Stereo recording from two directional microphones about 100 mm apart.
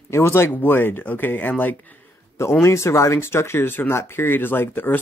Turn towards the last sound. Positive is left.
turn(degrees=20)  # may be behind; listen again after turning